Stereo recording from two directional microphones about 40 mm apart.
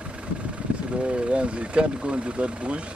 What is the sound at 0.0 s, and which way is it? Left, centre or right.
Vehicle, right.